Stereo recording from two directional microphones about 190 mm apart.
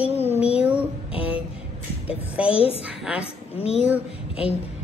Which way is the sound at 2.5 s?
30° left (ahead or behind).